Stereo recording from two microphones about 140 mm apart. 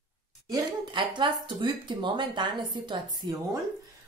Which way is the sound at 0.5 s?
35° right (ahead or behind).